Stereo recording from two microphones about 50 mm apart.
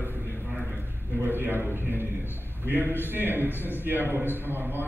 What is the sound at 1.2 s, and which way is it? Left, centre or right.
A man's voice, right.